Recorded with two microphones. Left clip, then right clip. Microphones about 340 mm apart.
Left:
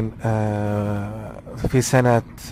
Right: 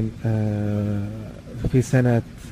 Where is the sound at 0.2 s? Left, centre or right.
Left.